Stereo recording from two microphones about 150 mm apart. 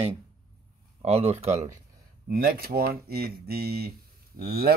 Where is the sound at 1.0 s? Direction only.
45° right (ahead or behind).